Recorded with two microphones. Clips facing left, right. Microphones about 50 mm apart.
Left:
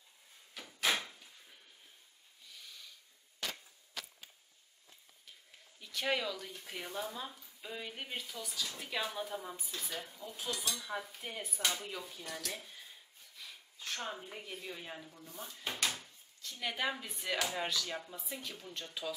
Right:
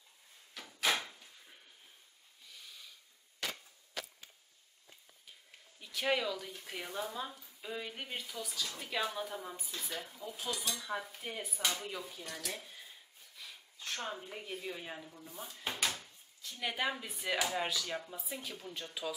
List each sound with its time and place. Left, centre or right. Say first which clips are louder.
0.6 s drawer open or close: even; centre
2.5 s snort: even; centre
5.8 s speech: right 2 dB; centre